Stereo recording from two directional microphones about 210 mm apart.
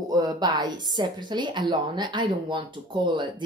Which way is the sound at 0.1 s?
20° right (ahead or behind).